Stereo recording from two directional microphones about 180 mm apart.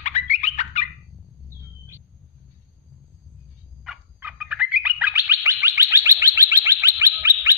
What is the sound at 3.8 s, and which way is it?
Bird, 5° right (ahead or behind).